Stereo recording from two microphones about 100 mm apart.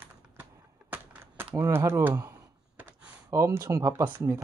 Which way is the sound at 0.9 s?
20° right (ahead or behind).